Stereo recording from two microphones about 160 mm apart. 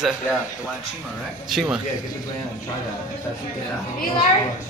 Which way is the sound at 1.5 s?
Centre (ahead or behind).